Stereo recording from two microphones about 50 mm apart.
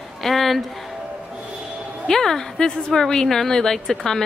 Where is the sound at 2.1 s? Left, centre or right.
Centre.